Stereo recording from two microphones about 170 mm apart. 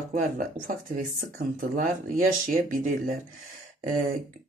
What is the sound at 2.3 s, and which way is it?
Speech, 50° right (ahead or behind).